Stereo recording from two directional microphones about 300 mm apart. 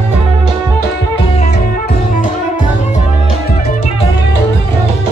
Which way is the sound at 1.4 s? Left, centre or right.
Left.